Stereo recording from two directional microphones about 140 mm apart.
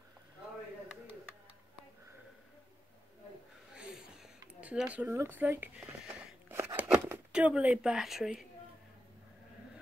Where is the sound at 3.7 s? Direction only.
5° right (ahead or behind).